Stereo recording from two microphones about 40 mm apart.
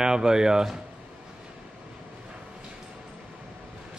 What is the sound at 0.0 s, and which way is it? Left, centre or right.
Speech, centre.